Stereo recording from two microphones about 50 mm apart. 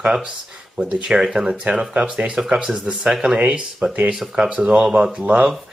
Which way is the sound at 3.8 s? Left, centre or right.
Right.